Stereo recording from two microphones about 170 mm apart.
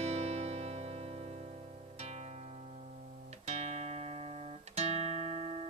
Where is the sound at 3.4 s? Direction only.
40° right (ahead or behind).